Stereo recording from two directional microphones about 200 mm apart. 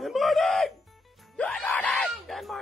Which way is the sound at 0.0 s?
Centre (ahead or behind).